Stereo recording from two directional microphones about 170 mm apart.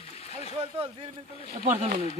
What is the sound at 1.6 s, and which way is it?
Speech, 45° right (ahead or behind).